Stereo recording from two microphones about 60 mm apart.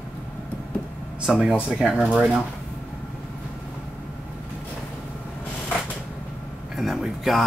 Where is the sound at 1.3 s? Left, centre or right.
Centre.